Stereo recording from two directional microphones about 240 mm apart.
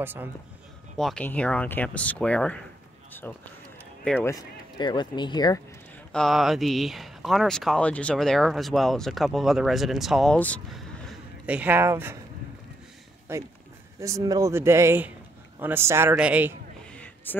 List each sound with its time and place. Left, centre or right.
0.0 s speech: centre
0.9 s speech: centre
6.1 s speech: centre
13.3 s speech: centre
16.9 s a sound: centre